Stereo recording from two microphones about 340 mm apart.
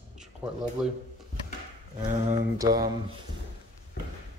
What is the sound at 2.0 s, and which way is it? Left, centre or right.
Speech, right.